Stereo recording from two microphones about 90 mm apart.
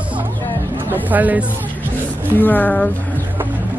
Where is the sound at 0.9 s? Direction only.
20° right (ahead or behind).